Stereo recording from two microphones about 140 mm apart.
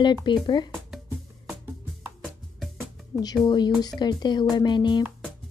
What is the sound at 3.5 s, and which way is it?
Speech, 30° left (ahead or behind).